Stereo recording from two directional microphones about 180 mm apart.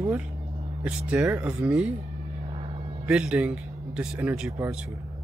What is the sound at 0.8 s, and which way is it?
A man's voice, 5° right (ahead or behind).